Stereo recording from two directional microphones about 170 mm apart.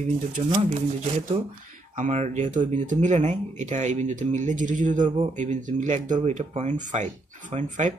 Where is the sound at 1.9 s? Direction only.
45° right (ahead or behind).